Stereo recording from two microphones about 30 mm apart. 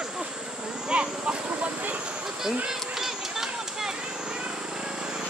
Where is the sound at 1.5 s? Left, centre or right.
Right.